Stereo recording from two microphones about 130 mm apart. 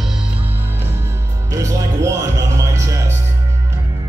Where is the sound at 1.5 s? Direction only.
25° right (ahead or behind).